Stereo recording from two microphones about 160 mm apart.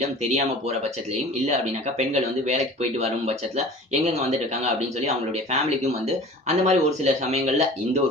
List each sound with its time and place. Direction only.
0.0 s speech: 45° right (ahead or behind)